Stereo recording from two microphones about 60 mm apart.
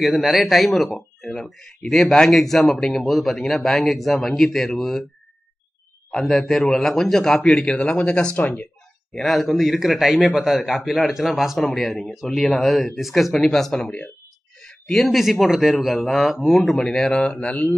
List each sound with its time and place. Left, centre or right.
0.0 s speech: centre
6.1 s speech: centre
7.6 s speech: centre
9.1 s speech: centre
17.1 s mantra: centre